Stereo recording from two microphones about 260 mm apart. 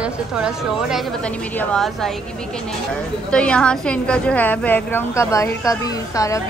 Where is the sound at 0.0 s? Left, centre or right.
Centre.